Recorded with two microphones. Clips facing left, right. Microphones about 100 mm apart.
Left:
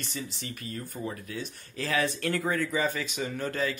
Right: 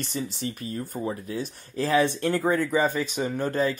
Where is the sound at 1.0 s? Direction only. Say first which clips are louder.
Right 5 dB; 25° right (ahead or behind).